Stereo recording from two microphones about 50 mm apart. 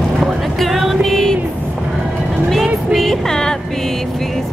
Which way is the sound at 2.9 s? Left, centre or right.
Centre.